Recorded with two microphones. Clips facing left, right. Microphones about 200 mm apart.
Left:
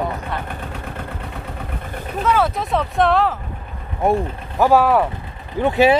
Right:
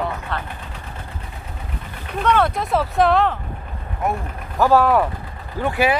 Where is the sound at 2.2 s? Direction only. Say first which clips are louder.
Even; 5° left (ahead or behind).